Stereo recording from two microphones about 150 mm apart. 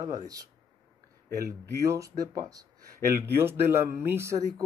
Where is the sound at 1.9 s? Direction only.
20° right (ahead or behind).